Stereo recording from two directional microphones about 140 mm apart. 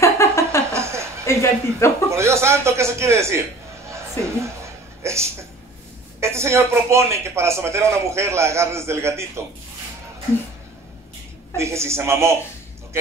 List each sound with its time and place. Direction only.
0.0 s a sound: 20° left (ahead or behind)
0.7 s a sound: 20° right (ahead or behind)
1.2 s speech: 20° left (ahead or behind)
2.0 s speech: 20° right (ahead or behind)
3.9 s music: 20° right (ahead or behind)
5.0 s a woman's voice: 20° right (ahead or behind)
11.5 s speech: 20° right (ahead or behind)